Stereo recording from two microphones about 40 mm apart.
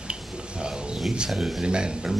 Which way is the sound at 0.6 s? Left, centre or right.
Right.